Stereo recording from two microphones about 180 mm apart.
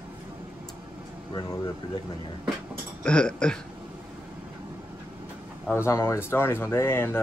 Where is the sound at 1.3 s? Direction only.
20° left (ahead or behind).